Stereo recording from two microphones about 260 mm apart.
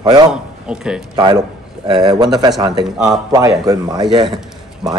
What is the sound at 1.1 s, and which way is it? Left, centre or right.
Speech, centre.